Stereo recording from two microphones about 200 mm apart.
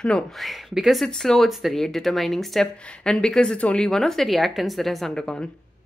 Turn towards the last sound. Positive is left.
turn(degrees=5)  # may be behind; listen again after turning